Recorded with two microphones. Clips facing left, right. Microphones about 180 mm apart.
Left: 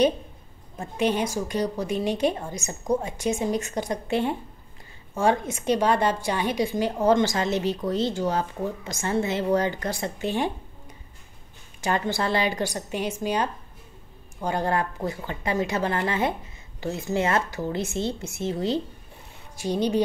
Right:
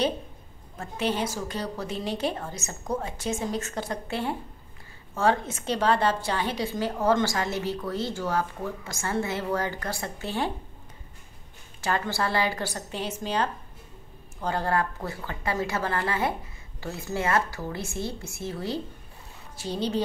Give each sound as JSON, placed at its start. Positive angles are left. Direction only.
{"t": 0.7, "sound": "a woman's voice", "side_deg": 15}
{"t": 11.8, "sound": "a woman's voice", "side_deg": 20}